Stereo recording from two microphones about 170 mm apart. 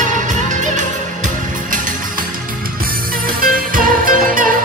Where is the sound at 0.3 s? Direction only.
45° right (ahead or behind).